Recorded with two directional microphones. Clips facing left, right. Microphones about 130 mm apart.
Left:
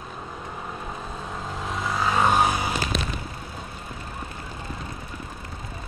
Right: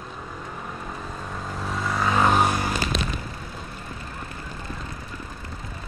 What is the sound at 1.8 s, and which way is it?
Vehicle, 5° left (ahead or behind).